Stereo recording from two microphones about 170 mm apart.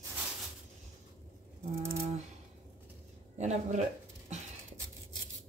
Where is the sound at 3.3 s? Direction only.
45° right (ahead or behind).